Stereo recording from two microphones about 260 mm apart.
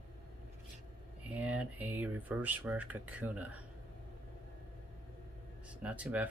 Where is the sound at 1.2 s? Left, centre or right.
Centre.